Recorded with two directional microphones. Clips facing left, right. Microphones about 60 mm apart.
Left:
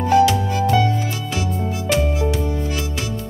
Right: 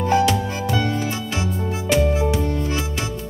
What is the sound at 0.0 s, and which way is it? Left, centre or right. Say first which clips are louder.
Music: left 3 dB; right.